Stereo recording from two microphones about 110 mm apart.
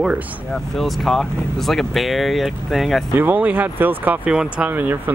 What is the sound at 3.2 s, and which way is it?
Speech, 15° right (ahead or behind).